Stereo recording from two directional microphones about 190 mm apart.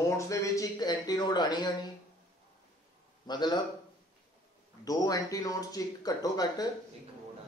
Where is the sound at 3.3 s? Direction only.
20° left (ahead or behind).